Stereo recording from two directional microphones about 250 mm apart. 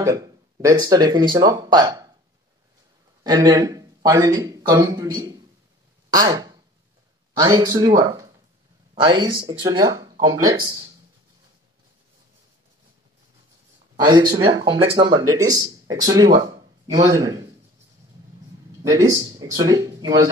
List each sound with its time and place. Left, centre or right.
0.0 s speech: centre
3.3 s speech: centre
6.0 s a sound: centre
7.3 s speech: centre
14.3 s speech: centre
18.9 s speech: centre